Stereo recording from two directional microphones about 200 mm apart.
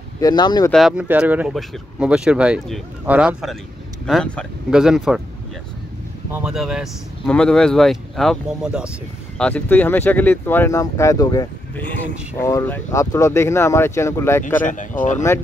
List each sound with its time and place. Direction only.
0.2 s speech: 20° left (ahead or behind)
0.7 s speech: centre (ahead or behind)
6.3 s speech: 5° right (ahead or behind)
9.4 s speech: 10° left (ahead or behind)
14.6 s speech: 40° left (ahead or behind)